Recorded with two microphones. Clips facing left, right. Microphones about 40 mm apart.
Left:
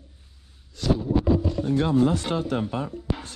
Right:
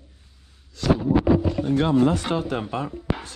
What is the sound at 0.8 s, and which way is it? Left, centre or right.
Speech, right.